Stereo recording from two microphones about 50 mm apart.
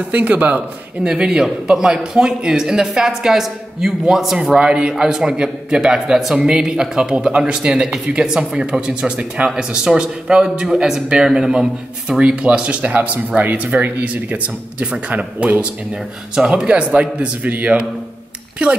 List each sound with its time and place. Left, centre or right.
0.1 s a man's voice: right
1.0 s a man's voice: centre
4.4 s a man's voice: centre